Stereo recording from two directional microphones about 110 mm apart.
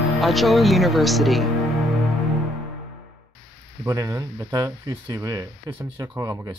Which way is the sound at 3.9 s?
25° right (ahead or behind).